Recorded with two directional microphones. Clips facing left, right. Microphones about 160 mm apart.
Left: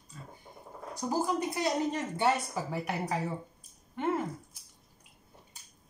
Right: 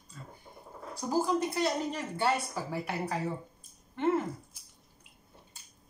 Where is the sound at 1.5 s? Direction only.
20° left (ahead or behind).